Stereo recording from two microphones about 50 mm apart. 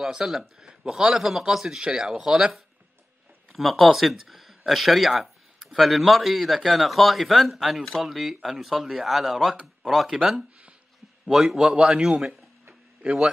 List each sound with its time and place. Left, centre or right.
0.0 s a man's voice: centre
3.5 s a man's voice: centre
13.0 s speech: right